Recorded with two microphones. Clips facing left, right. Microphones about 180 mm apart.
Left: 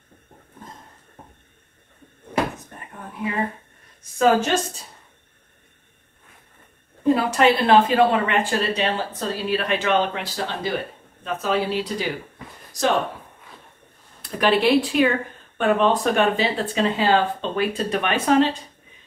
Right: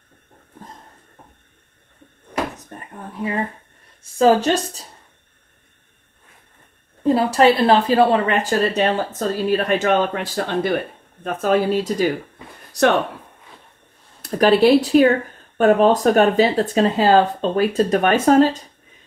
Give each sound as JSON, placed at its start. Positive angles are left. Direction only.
{"t": 4.0, "sound": "speech", "side_deg": -30}
{"t": 7.0, "sound": "a woman's voice", "side_deg": -35}
{"t": 12.7, "sound": "speech", "side_deg": -65}
{"t": 14.2, "sound": "speech", "side_deg": -40}